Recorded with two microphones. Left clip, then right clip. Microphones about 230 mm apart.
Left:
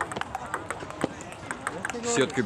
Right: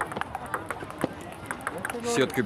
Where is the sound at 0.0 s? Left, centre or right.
Left.